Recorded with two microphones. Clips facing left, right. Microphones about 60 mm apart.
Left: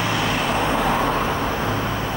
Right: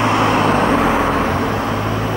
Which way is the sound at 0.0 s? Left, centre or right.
Right.